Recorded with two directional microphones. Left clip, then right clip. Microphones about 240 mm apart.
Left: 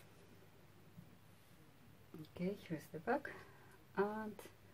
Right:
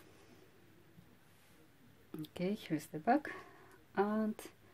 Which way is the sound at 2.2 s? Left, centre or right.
Right.